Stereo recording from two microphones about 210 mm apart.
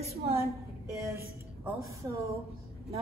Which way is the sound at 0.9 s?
15° right (ahead or behind).